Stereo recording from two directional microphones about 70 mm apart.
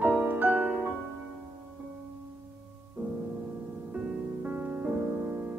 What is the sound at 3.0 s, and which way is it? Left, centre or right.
Music, right.